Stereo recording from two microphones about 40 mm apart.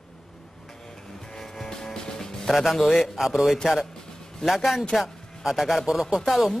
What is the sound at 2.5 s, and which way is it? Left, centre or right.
Speech, centre.